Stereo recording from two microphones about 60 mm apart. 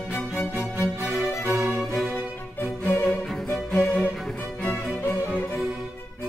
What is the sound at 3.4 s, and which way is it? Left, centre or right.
Music, left.